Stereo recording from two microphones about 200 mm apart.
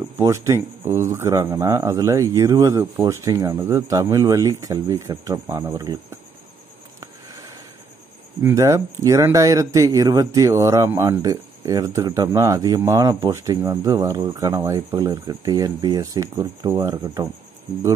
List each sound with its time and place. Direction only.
0.2 s speech: 15° right (ahead or behind)
8.4 s speech: 15° right (ahead or behind)